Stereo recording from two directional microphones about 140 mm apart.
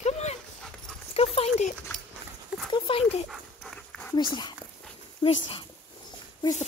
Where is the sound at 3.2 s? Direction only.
Centre (ahead or behind).